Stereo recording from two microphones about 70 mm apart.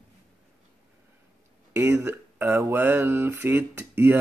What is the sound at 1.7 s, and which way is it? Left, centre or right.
Speech, right.